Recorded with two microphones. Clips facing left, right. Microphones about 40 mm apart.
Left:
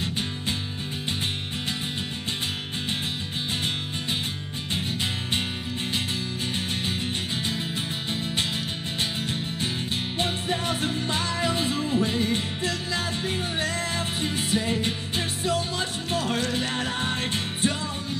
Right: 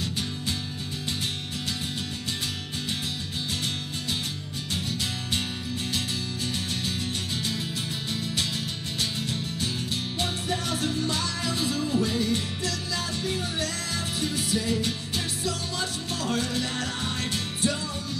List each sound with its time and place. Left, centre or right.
10.1 s music: left